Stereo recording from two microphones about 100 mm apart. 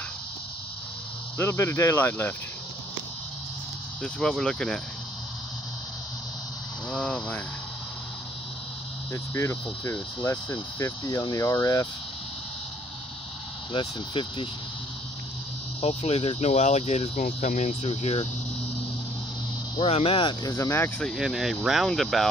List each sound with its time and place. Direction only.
1.4 s speech: 25° left (ahead or behind)
4.0 s speech: 5° left (ahead or behind)
6.9 s speech: 10° left (ahead or behind)
9.1 s speech: 30° left (ahead or behind)
13.7 s speech: 60° left (ahead or behind)
15.8 s speech: 85° left
19.9 s speech: 70° left (ahead or behind)
20.4 s speech: 30° left (ahead or behind)
21.2 s speech: 5° right (ahead or behind)